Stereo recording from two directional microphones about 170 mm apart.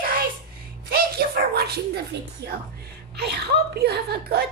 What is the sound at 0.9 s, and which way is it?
Bow-wow, 65° right (ahead or behind).